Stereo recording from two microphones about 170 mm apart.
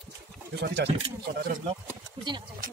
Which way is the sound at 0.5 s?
75° right (ahead or behind).